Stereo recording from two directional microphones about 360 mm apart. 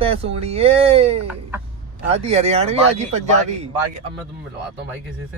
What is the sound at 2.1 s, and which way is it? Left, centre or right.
Speech, centre.